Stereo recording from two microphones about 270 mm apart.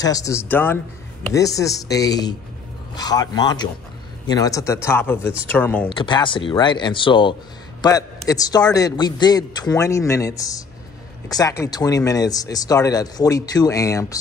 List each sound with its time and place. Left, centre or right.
0.0 s speech: centre
5.9 s speech: centre